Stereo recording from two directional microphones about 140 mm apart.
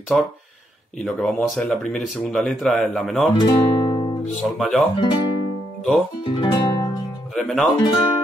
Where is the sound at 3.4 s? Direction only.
35° left (ahead or behind).